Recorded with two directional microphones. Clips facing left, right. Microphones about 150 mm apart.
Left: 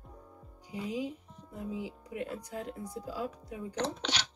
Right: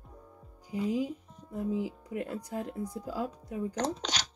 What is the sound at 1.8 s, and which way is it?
Speech, 40° right (ahead or behind).